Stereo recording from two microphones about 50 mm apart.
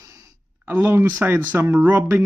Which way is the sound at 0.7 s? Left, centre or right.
Right.